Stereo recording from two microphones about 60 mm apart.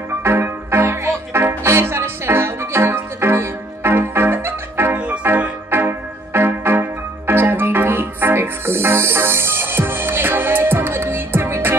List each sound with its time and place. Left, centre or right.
0.2 s music: right
4.9 s music: centre
5.7 s organ: right